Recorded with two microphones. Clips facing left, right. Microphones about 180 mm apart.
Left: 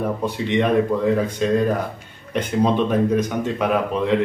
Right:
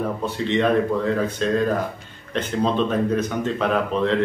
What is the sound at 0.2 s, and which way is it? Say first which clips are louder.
Speech: right 1 dB; 15° left (ahead or behind).